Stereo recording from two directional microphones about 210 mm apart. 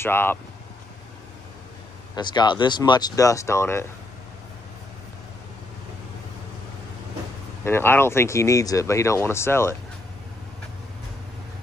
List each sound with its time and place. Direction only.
0.0 s speech: 10° left (ahead or behind)
2.1 s speech: 20° left (ahead or behind)
7.6 s speech: 10° left (ahead or behind)